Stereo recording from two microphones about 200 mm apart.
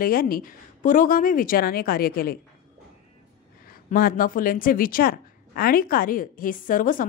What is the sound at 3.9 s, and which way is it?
A woman's voice, 45° left (ahead or behind).